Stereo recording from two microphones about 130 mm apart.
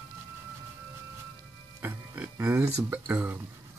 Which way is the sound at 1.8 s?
10° right (ahead or behind).